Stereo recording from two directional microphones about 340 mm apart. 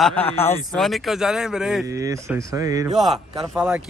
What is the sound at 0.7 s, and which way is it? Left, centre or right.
Speech, centre.